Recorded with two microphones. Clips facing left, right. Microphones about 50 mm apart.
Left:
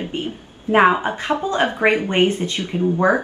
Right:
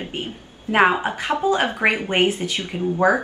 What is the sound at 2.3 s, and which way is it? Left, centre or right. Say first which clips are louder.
Speech: left 3 dB; right.